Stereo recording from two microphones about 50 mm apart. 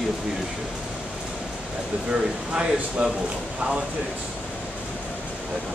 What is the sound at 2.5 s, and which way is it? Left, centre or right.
Speech, centre.